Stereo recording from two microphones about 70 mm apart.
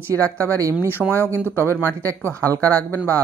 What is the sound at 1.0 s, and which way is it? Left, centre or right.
Speech, centre.